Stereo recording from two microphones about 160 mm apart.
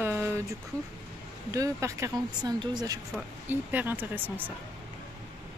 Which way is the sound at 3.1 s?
10° right (ahead or behind).